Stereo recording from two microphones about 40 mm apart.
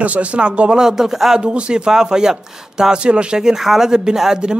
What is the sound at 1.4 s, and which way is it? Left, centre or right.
Speech, right.